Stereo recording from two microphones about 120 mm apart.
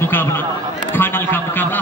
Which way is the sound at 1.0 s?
15° left (ahead or behind).